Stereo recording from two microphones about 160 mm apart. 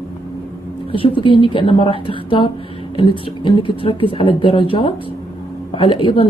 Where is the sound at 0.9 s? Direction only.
30° left (ahead or behind).